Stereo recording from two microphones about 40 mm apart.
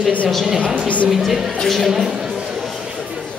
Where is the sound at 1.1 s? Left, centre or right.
Centre.